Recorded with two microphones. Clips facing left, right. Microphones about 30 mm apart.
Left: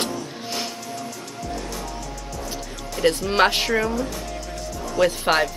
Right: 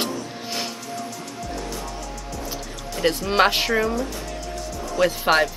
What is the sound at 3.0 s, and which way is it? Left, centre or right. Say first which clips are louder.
Speech: even; centre.